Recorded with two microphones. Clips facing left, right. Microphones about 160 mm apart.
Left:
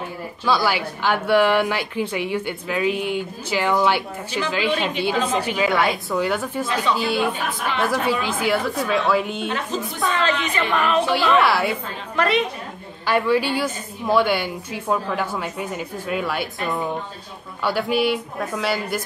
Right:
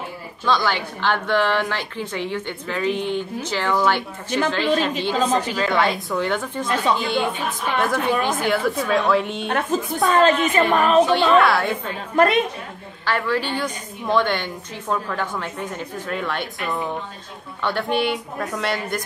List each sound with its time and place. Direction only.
0.5 s a woman's voice: 10° left (ahead or behind)
8.1 s a woman's voice: 50° right (ahead or behind)
8.4 s a woman's voice: 5° left (ahead or behind)
9.5 s a woman's voice: 55° right (ahead or behind)
11.1 s a woman's voice: centre (ahead or behind)
12.2 s a woman's voice: 50° right (ahead or behind)
13.0 s a woman's voice: 15° left (ahead or behind)